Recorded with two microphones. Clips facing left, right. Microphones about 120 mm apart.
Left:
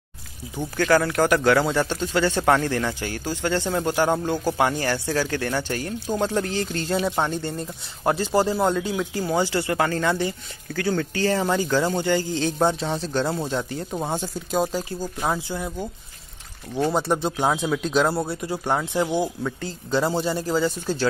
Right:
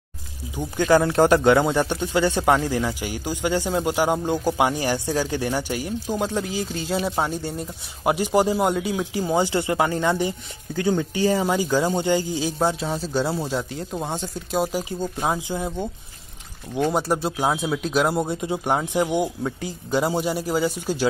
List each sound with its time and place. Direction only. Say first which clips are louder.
0.6 s speech: right 2 dB; 20° right (ahead or behind); by 14.7 s centre (ahead or behind)
14.7 s speech: right 2 dB; 10° right (ahead or behind)
17.0 s speech: even; 5° right (ahead or behind)
18.1 s speech: right 2 dB; 20° right (ahead or behind)